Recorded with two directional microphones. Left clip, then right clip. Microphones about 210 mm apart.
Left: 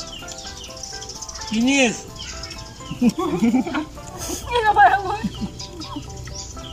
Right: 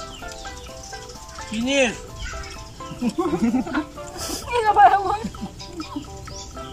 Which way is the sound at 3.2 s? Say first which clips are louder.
Left 2 dB; 5° left (ahead or behind).